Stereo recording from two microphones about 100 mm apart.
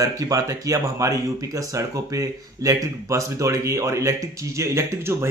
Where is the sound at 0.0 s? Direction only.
35° right (ahead or behind).